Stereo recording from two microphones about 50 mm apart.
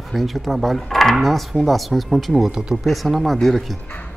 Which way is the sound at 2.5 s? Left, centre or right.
Centre.